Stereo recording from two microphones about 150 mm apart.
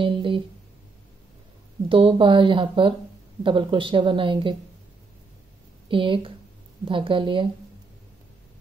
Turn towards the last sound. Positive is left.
turn(degrees=-35)  # may be behind; listen again after turning